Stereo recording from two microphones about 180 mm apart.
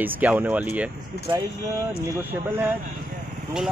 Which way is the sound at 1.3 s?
30° right (ahead or behind).